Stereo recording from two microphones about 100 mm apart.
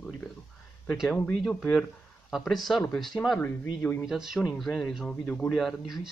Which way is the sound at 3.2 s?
30° left (ahead or behind).